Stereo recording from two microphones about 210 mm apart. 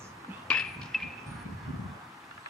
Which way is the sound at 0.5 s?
5° left (ahead or behind).